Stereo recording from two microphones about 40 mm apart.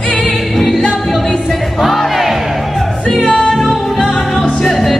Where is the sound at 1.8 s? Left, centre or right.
Centre.